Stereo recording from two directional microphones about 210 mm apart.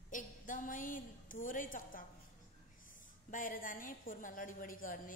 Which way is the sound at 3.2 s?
40° left (ahead or behind).